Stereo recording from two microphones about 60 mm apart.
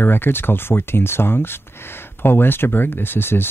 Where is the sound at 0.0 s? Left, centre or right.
Left.